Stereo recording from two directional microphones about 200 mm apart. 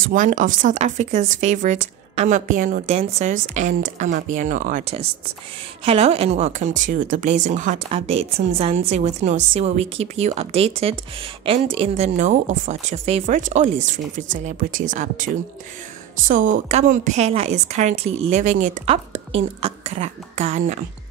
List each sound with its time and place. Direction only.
0.0 s speech: 40° right (ahead or behind)